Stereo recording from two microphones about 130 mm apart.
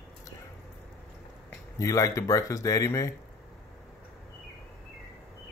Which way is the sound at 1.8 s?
25° left (ahead or behind).